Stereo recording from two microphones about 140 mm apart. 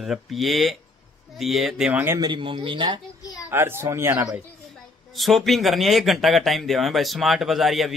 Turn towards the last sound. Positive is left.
turn(degrees=0)  # may be behind; listen again after turning